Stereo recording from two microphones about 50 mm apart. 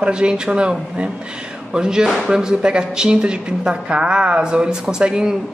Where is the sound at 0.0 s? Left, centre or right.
Centre.